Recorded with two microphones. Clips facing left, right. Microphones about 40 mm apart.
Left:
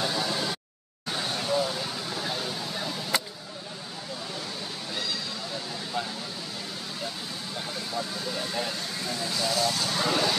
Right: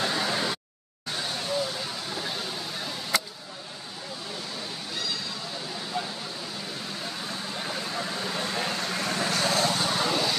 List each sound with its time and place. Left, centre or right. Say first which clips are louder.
0.0 s a sound: right 1 dB; right
1.1 s vehicle: left 2 dB; centre
5.9 s a sound: left 1 dB; centre
7.9 s vehicle: right 1 dB; right
9.7 s vehicle: right 2 dB; right
9.9 s vehicle: even; centre